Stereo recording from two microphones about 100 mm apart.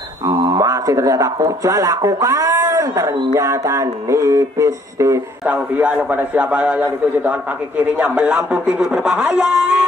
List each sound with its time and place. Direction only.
0.3 s speech: 40° right (ahead or behind)
3.3 s a sound: 35° right (ahead or behind)
5.4 s a man's voice: 10° right (ahead or behind)